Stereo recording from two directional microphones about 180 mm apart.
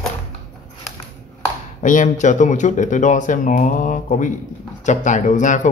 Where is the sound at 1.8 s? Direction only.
45° left (ahead or behind).